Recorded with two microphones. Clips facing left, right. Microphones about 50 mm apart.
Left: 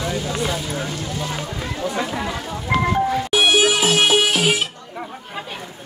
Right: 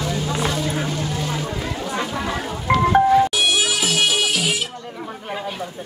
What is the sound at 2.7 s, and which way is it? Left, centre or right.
Music, right.